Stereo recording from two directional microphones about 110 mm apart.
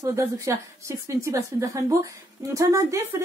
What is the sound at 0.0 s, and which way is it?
A woman's voice, 30° right (ahead or behind).